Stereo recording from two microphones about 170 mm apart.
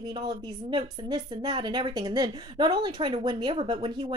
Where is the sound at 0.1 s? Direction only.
25° right (ahead or behind).